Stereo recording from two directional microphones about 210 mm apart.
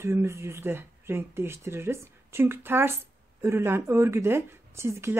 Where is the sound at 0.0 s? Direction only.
10° right (ahead or behind).